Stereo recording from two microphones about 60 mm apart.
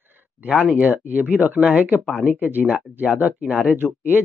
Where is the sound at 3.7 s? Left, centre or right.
Right.